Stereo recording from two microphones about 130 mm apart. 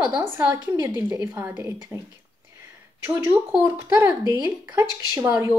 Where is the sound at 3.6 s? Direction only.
25° right (ahead or behind).